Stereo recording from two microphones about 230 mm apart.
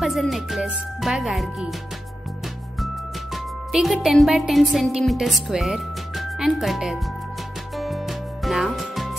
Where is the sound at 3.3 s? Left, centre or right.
Centre.